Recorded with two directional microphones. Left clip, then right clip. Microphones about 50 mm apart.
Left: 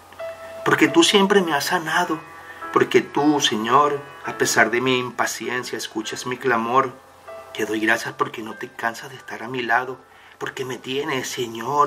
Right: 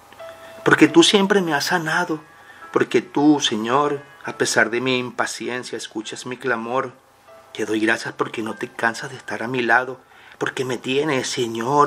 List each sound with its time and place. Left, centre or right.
0.7 s speech: right